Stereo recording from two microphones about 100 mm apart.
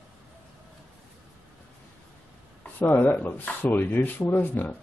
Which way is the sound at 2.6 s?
15° left (ahead or behind).